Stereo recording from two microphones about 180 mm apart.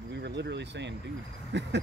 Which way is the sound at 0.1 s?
75° right (ahead or behind).